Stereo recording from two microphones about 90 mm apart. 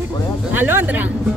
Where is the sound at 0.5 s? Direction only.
20° right (ahead or behind).